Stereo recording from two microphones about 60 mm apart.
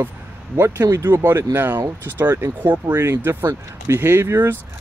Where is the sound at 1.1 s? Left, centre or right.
Right.